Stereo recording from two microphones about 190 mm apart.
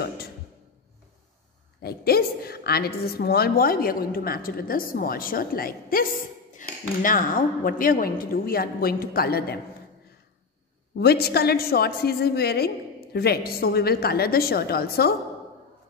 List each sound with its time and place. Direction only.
1.8 s a woman's voice: 55° left (ahead or behind)
11.0 s a woman's voice: 55° left (ahead or behind)